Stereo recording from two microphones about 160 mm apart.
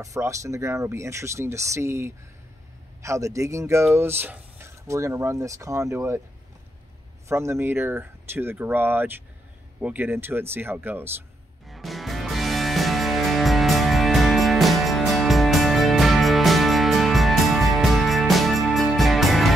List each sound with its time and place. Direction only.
0.0 s speech: 20° right (ahead or behind)
7.2 s speech: 15° right (ahead or behind)
11.6 s music: centre (ahead or behind)